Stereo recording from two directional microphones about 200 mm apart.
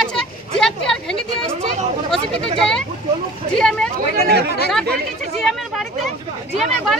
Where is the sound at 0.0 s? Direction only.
5° left (ahead or behind).